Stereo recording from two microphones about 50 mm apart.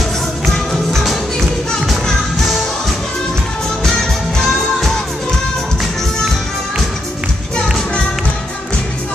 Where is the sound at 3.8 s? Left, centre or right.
Centre.